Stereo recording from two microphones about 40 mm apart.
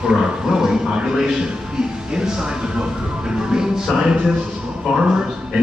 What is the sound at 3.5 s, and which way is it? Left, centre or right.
Music, centre.